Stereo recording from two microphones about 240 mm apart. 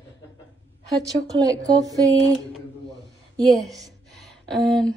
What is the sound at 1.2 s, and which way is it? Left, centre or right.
Speech, centre.